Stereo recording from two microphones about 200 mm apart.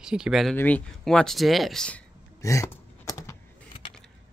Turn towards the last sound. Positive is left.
turn(degrees=15)  # may be behind; listen again after turning